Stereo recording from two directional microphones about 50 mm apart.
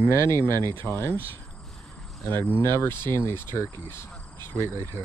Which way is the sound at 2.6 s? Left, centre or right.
Left.